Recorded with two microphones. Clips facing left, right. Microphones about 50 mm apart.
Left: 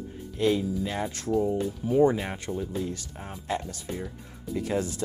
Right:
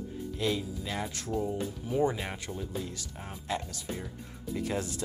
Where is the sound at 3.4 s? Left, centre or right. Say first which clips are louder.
Left 3 dB; left.